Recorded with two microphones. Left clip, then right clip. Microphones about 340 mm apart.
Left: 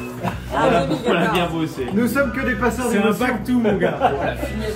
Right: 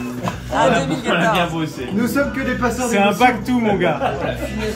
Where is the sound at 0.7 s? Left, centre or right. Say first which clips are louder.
Left 2 dB; centre.